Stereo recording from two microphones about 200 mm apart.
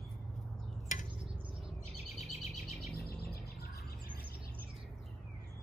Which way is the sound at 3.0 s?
50° left (ahead or behind).